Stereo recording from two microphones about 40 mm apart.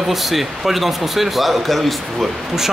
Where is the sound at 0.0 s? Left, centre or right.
Centre.